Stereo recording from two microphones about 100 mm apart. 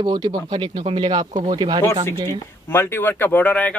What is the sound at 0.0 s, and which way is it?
Speech, 50° right (ahead or behind).